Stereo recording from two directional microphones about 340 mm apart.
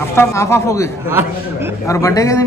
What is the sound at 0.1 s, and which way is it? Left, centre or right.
Speech, centre.